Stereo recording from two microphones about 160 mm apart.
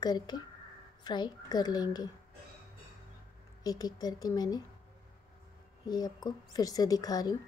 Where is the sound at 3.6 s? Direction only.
25° left (ahead or behind).